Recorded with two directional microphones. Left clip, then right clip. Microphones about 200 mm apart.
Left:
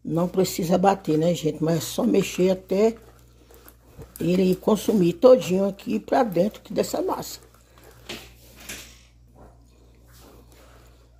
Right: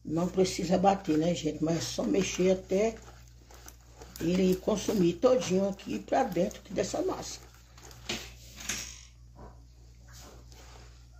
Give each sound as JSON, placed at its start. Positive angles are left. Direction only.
{"t": 0.1, "sound": "speech", "side_deg": 45}
{"t": 4.3, "sound": "speech", "side_deg": 45}